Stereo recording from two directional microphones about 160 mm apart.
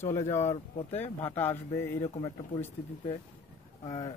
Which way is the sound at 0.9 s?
10° left (ahead or behind).